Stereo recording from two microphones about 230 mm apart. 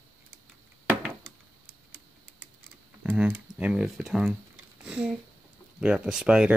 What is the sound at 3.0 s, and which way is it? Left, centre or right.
Speech, centre.